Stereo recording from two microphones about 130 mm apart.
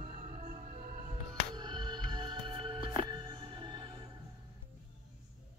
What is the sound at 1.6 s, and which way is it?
Music, 35° right (ahead or behind).